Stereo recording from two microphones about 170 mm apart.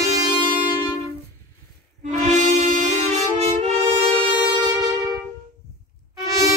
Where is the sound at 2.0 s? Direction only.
45° right (ahead or behind).